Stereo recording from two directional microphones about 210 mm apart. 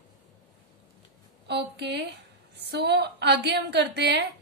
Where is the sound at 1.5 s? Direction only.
50° right (ahead or behind).